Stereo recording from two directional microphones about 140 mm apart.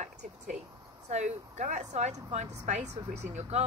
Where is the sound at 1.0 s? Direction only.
55° right (ahead or behind).